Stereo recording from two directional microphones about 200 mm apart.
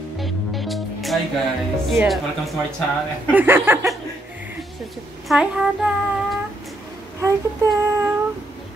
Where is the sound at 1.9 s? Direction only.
Centre (ahead or behind).